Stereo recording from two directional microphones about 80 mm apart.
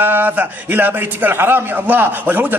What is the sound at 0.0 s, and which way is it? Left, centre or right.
A man's voice, right.